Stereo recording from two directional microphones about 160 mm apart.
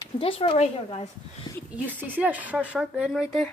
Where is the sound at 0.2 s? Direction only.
35° left (ahead or behind).